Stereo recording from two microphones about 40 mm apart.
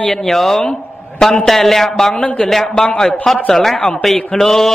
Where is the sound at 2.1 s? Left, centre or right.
Left.